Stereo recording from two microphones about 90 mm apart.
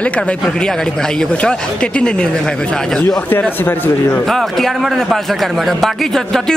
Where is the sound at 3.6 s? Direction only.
20° left (ahead or behind).